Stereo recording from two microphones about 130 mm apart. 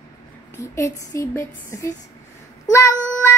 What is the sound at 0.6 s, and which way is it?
Speech, 25° left (ahead or behind).